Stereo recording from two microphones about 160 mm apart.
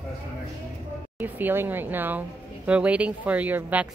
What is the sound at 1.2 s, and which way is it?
A woman's voice, 15° right (ahead or behind).